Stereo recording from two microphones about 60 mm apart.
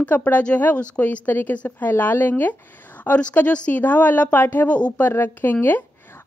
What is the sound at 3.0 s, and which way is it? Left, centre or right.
Speech, centre.